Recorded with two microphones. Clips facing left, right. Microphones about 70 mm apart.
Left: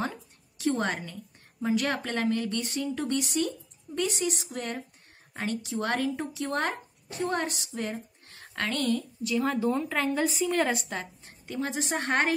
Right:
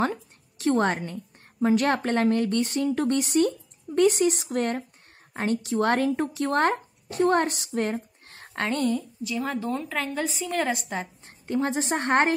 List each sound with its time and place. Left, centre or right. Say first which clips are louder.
0.0 s a sound: right 7 dB; right
1.6 s speech: right 6 dB; right
8.5 s a woman's voice: right 3 dB; right
9.2 s a woman's voice: left 2 dB; centre
11.4 s a woman's voice: right 6 dB; right